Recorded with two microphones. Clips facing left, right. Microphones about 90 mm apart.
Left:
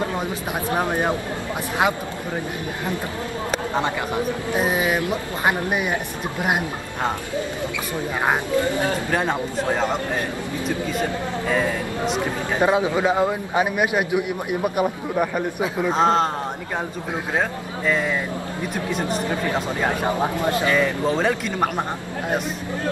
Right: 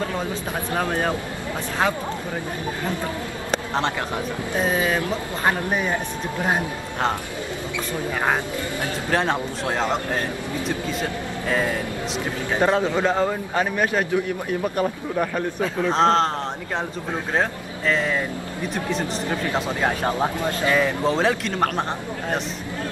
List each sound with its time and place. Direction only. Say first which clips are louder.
0.7 s a man's voice: left 1 dB; 20° left (ahead or behind)
3.5 s a sound: even; 5° left (ahead or behind)
4.6 s a man's voice: even; 15° left (ahead or behind)
9.1 s speech: even; 5° left (ahead or behind)
12.5 s a man's voice: left 1 dB; 5° left (ahead or behind)
17.3 s speech: right 1 dB; 5° left (ahead or behind)
20.3 s speech: left 3 dB; 20° left (ahead or behind)
20.7 s speech: even; 5° right (ahead or behind)